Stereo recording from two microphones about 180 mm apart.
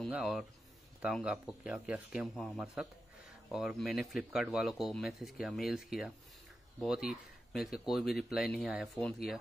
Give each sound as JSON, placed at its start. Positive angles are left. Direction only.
{"t": 0.0, "sound": "speech", "side_deg": -5}